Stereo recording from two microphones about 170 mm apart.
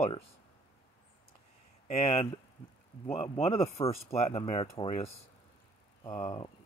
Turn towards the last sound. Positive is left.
turn(degrees=25)  # may be behind; listen again after turning